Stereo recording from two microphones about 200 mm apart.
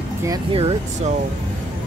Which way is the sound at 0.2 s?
20° right (ahead or behind).